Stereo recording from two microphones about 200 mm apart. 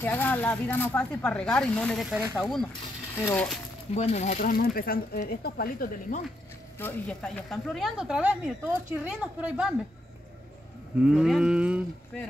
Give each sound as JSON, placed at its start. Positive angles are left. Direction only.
{"t": 0.0, "sound": "speech", "side_deg": 10}
{"t": 2.0, "sound": "speech", "side_deg": -10}
{"t": 2.3, "sound": "speech", "side_deg": 0}
{"t": 3.9, "sound": "speech", "side_deg": 35}
{"t": 6.8, "sound": "speech", "side_deg": 10}
{"t": 11.0, "sound": "speech", "side_deg": -5}